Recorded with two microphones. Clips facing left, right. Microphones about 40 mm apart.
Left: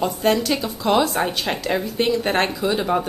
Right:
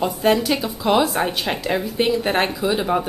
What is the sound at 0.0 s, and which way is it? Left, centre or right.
Speech, centre.